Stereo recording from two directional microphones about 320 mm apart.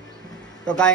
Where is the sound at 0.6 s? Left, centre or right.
Centre.